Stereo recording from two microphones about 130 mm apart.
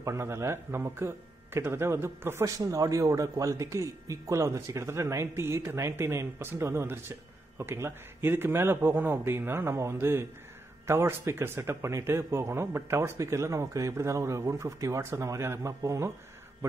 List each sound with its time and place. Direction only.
0.0 s speech: 20° right (ahead or behind)